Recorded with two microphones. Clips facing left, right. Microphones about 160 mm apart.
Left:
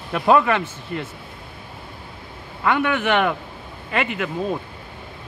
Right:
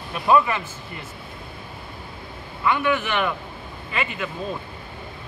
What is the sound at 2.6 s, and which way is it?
A man's voice, 65° left (ahead or behind).